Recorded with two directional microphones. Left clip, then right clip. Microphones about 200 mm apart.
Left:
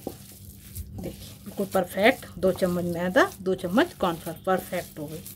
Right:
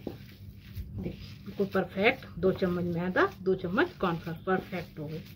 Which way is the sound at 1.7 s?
50° left (ahead or behind).